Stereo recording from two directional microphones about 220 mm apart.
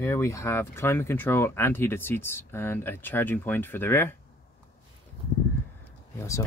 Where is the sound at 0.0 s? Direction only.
15° left (ahead or behind).